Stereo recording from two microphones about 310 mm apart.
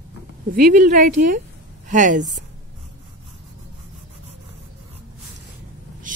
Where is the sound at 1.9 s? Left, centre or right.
Right.